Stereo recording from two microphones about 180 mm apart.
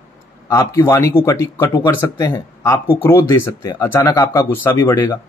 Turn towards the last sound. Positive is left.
turn(degrees=15)  # may be behind; listen again after turning